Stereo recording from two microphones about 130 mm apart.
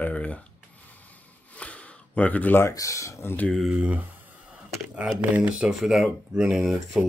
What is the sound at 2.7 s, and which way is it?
Speech, 25° left (ahead or behind).